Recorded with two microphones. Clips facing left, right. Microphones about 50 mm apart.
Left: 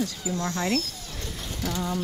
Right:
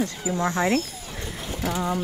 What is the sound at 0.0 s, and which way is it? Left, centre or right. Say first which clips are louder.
Speech: right 4 dB; right.